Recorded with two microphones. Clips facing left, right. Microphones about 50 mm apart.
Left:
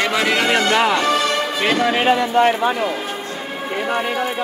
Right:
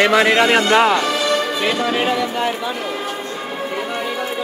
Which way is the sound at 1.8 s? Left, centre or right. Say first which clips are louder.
Left 2 dB; left.